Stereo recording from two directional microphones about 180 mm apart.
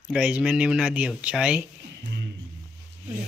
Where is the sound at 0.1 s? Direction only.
5° right (ahead or behind).